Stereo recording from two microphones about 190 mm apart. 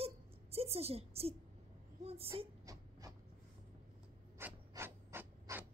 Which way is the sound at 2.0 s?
30° right (ahead or behind).